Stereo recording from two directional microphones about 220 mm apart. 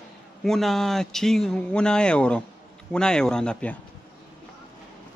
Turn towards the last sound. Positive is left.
turn(degrees=5)  # may be behind; listen again after turning